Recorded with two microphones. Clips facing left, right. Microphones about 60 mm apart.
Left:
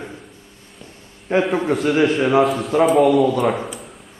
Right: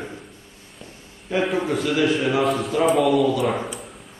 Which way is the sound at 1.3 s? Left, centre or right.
Left.